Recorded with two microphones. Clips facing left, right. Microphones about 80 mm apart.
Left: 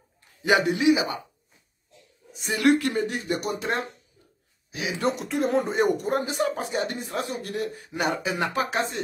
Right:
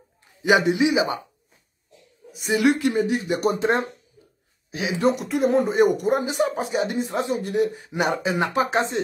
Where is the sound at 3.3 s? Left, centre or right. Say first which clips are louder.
Right 7 dB; right.